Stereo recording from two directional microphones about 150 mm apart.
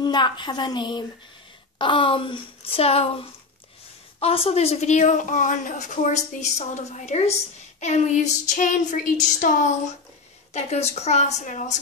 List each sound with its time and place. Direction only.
0.0 s a woman's voice: 30° left (ahead or behind); by 11.8 s 55° left (ahead or behind)